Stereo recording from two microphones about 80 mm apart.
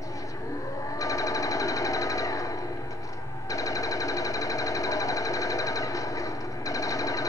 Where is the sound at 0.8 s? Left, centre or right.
Left.